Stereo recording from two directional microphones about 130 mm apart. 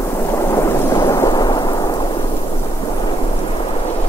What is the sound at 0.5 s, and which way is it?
Thunder, 20° left (ahead or behind).